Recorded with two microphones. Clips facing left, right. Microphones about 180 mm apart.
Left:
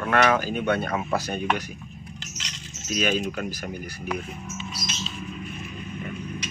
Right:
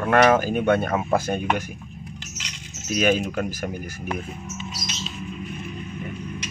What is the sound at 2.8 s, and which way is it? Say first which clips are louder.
Speech: right 4 dB; 50° right (ahead or behind).